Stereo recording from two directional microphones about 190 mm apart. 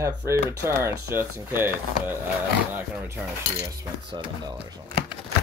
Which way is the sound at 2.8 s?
10° right (ahead or behind).